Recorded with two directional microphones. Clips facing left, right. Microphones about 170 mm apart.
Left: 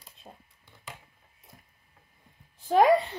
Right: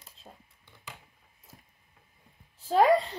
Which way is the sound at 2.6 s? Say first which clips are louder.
Left 2 dB; 15° left (ahead or behind).